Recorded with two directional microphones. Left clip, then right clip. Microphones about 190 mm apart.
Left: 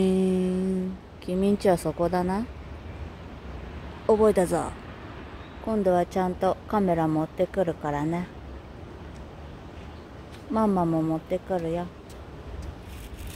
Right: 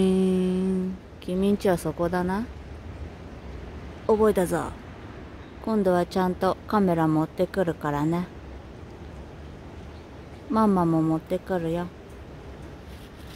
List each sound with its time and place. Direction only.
0.0 s humming: 15° right (ahead or behind)
1.2 s a sound: 10° right (ahead or behind)
1.9 s speech: 10° right (ahead or behind)
4.1 s speech: 15° right (ahead or behind)
5.7 s a woman's voice: 20° right (ahead or behind)
10.5 s a woman's voice: 20° right (ahead or behind)